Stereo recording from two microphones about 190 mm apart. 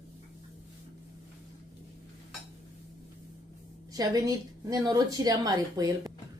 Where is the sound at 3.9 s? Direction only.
20° right (ahead or behind).